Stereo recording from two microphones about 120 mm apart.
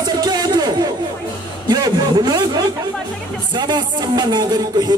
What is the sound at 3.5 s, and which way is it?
Speech, 35° right (ahead or behind).